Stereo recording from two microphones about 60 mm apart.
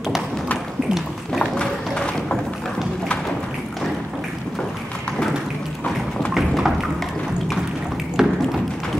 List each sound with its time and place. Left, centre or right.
1.4 s run: centre
6.3 s a sound: centre
8.2 s thump: centre